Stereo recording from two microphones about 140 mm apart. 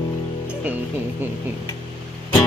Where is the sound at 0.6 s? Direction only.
10° right (ahead or behind).